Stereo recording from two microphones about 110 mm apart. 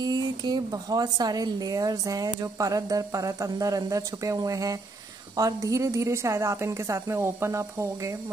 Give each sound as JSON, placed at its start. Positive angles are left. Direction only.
{"t": 0.0, "sound": "a woman's voice", "side_deg": -35}